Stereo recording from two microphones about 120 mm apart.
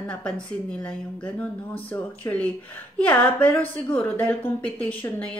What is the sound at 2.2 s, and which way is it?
Speech, 25° left (ahead or behind).